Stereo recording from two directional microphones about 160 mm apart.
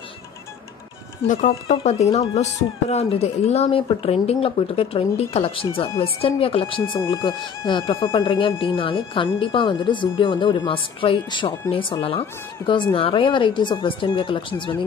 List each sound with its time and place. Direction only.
1.2 s speech: 50° left (ahead or behind); by 14.7 s 30° left (ahead or behind)